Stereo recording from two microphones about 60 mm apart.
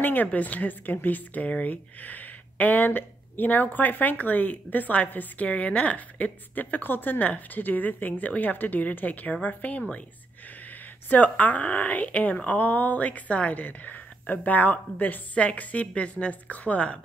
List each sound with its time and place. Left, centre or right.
0.0 s speech: left
11.1 s speech: left